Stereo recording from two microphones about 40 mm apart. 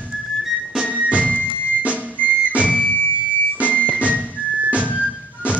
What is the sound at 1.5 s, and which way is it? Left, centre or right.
Music, right.